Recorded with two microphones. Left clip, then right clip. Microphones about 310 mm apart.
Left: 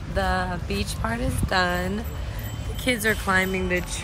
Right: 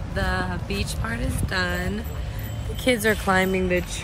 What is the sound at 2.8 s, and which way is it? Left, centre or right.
Speech, centre.